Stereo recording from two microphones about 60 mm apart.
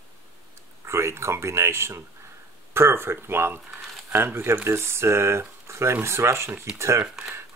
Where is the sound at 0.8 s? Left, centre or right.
Right.